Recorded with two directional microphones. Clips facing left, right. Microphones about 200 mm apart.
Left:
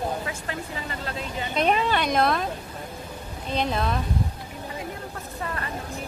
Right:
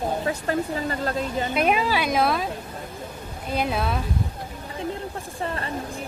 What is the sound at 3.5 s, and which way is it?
Speech, 5° right (ahead or behind).